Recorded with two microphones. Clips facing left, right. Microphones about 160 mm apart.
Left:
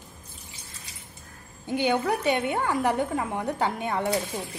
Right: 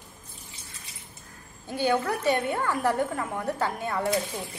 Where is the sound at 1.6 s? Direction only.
20° left (ahead or behind).